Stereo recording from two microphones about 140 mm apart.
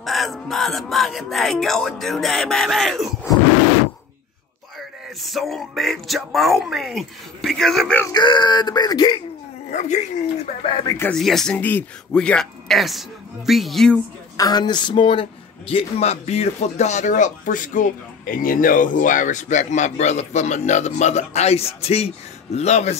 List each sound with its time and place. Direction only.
0.0 s speech: centre (ahead or behind)
4.7 s speech: centre (ahead or behind)
8.1 s speech: 30° left (ahead or behind)
9.7 s speech: 55° left (ahead or behind)
11.1 s speech: 5° left (ahead or behind)
14.3 s speech: 25° left (ahead or behind); by 22.9 s 55° left (ahead or behind)